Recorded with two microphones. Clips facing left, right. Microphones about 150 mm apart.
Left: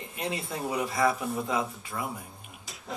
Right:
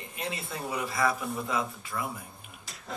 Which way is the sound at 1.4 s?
20° left (ahead or behind).